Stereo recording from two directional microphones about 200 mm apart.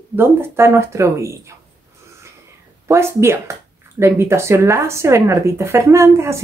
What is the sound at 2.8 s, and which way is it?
Speech, 15° right (ahead or behind).